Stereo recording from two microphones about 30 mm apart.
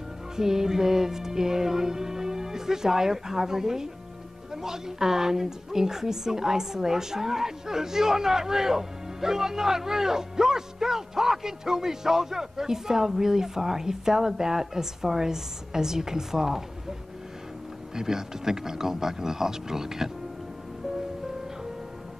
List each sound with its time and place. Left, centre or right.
0.4 s music: centre
4.6 s a woman's voice: centre
17.9 s a woman's voice: centre